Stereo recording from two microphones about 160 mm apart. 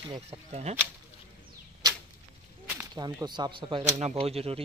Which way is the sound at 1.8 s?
25° right (ahead or behind).